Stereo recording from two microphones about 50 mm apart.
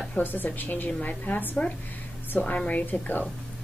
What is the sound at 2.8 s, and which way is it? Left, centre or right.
Speech, left.